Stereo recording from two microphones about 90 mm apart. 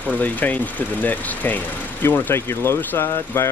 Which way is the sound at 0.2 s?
20° left (ahead or behind).